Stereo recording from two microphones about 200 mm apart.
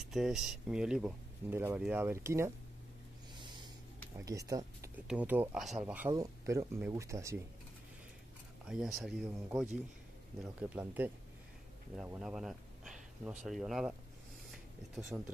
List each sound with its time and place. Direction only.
0.0 s speech: centre (ahead or behind)
3.3 s snort: 20° right (ahead or behind)
4.2 s speech: 15° right (ahead or behind)
8.6 s speech: centre (ahead or behind)
10.4 s speech: 5° right (ahead or behind)
15.1 s speech: 5° right (ahead or behind)